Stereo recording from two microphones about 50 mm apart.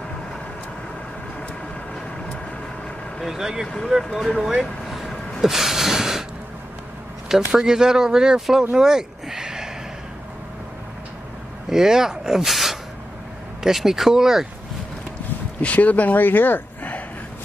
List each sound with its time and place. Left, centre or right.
3.2 s speech: centre
4.1 s speech: centre
4.8 s a sound: centre
7.2 s speech: centre
11.7 s speech: centre
15.6 s speech: left